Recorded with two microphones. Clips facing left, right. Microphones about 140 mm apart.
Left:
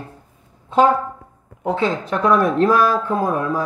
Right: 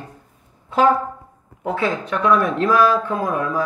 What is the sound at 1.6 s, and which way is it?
Speech, 25° left (ahead or behind).